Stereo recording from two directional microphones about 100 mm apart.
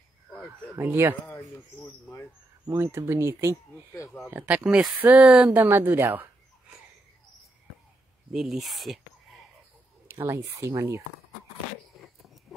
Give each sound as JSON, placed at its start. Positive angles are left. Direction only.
{"t": 0.5, "sound": "speech", "side_deg": -25}
{"t": 2.8, "sound": "speech", "side_deg": -25}
{"t": 8.3, "sound": "speech", "side_deg": -5}
{"t": 10.2, "sound": "speech", "side_deg": -30}
{"t": 12.0, "sound": "a sound", "side_deg": 0}